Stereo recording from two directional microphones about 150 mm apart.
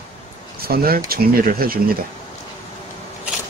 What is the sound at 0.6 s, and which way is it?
Speech, 85° right.